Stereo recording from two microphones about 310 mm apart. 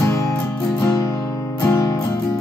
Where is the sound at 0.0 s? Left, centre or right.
Centre.